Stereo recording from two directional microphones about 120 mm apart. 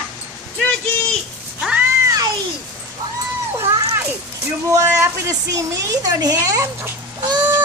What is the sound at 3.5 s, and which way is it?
Children playing, 25° right (ahead or behind).